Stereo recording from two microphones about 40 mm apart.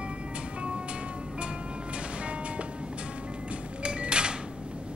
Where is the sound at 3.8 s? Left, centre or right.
Right.